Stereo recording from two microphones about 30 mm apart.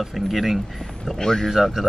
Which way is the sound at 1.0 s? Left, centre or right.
Centre.